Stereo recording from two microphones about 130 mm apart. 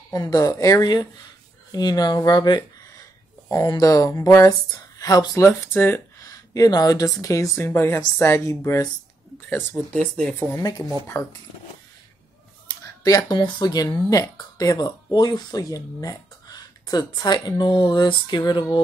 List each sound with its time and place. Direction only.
0.1 s speech: 30° left (ahead or behind)
6.5 s speech: 30° left (ahead or behind)
10.5 s speech: 35° left (ahead or behind)
12.6 s speech: 30° left (ahead or behind)